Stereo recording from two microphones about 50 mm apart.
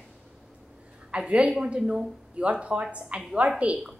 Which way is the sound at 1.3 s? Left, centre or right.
Right.